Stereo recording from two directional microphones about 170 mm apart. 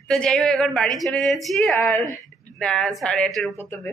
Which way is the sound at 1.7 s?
15° left (ahead or behind).